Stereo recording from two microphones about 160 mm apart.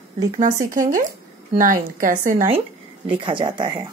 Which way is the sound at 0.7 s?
55° right (ahead or behind).